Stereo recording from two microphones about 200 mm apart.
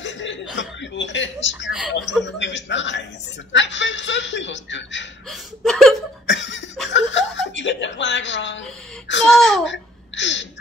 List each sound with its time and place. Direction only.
0.0 s chuckle: 65° left (ahead or behind)
0.6 s a man's voice: 65° left (ahead or behind)
5.3 s speech: centre (ahead or behind)
6.2 s chuckle: 65° left (ahead or behind)
9.3 s speech: centre (ahead or behind)
9.7 s a sound: 65° left (ahead or behind)